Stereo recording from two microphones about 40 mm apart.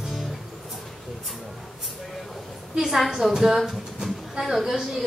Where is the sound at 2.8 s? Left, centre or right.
Centre.